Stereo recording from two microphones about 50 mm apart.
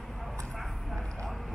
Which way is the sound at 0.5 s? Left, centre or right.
Centre.